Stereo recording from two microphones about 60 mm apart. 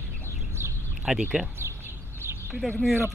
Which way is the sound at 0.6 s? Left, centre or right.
Right.